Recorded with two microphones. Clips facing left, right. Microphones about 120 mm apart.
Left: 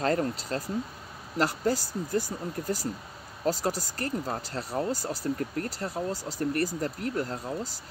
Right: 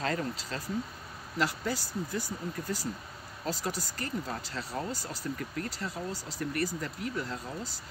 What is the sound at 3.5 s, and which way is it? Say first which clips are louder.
Speech: left 6 dB; 40° left (ahead or behind).